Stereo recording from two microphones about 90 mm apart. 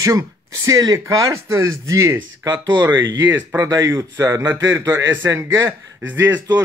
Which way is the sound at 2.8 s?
30° right (ahead or behind).